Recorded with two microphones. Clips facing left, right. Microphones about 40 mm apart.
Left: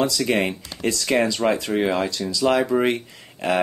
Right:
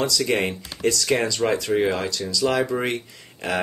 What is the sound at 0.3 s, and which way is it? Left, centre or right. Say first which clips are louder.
Speech: left 1 dB; left.